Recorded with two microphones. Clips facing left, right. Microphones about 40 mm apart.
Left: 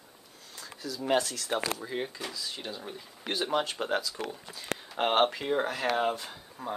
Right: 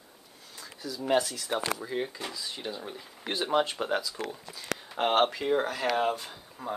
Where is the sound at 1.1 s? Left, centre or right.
Centre.